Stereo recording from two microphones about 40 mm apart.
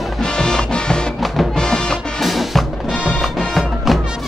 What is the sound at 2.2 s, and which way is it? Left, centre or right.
Music, centre.